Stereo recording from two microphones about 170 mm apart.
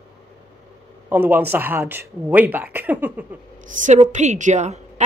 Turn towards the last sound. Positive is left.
turn(degrees=-40)  # may be behind; listen again after turning